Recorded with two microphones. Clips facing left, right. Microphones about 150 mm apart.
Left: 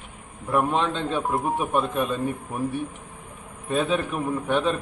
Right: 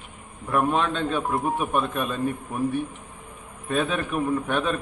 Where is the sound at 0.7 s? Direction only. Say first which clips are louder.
Even; 20° left (ahead or behind).